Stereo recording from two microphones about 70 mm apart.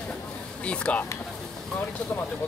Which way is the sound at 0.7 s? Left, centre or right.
Centre.